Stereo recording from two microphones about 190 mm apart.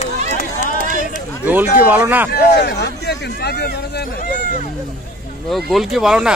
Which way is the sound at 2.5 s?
60° left (ahead or behind).